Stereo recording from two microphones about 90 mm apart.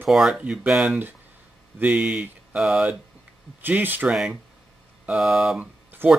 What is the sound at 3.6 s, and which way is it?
Speech, 20° right (ahead or behind).